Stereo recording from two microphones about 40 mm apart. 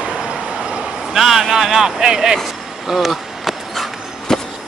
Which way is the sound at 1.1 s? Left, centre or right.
Centre.